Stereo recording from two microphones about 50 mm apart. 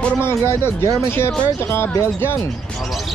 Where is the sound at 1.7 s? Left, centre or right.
Left.